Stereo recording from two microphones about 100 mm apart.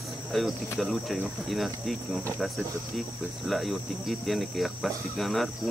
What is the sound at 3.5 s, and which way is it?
Cricket, centre (ahead or behind).